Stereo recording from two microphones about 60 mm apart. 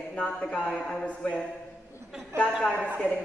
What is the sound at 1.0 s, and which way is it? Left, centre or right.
Speech, left.